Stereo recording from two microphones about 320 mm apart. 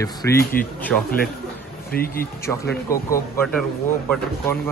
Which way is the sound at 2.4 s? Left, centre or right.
Centre.